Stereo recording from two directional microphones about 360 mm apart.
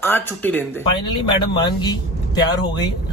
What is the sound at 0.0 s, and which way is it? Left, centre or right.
A man's voice, centre.